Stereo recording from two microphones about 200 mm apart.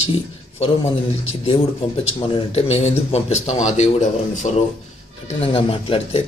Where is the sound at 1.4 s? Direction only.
30° left (ahead or behind).